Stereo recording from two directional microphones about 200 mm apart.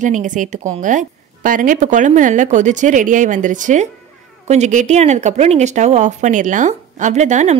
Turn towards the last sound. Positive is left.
turn(degrees=-35)  # may be behind; listen again after turning